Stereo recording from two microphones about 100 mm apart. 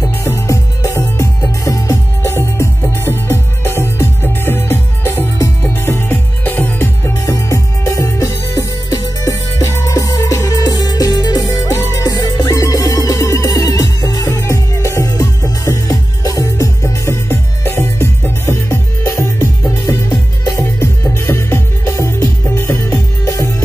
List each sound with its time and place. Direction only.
0.2 s music: 25° left (ahead or behind)
7.2 s music: 30° left (ahead or behind)
20.4 s music: 30° left (ahead or behind)